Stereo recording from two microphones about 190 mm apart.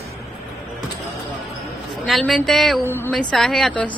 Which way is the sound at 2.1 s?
Centre (ahead or behind).